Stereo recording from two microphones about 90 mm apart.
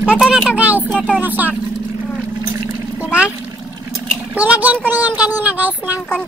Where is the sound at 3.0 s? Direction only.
15° right (ahead or behind).